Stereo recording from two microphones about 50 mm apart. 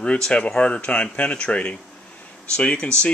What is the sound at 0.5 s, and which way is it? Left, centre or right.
Speech, centre.